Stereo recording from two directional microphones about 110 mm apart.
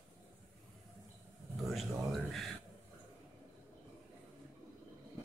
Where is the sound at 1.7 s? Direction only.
Centre (ahead or behind).